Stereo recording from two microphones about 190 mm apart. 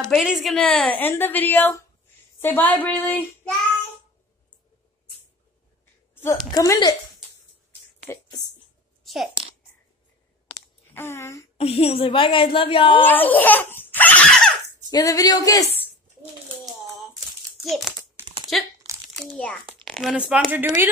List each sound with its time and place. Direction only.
0.1 s a woman's voice: centre (ahead or behind)
6.1 s a woman's voice: 15° left (ahead or behind)
9.0 s a sound: centre (ahead or behind)
10.9 s speech: 15° left (ahead or behind)
11.5 s a woman's voice: 30° left (ahead or behind)
13.0 s a woman's voice: 10° left (ahead or behind)
14.9 s a woman's voice: 20° left (ahead or behind)
17.6 s a child's voice: centre (ahead or behind)
18.2 s crumpling: 10° right (ahead or behind)
19.1 s a child's voice: 5° left (ahead or behind)